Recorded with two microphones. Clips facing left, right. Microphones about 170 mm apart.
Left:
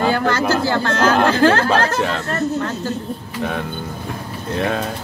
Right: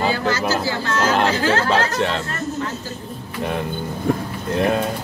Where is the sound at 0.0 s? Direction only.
55° left (ahead or behind).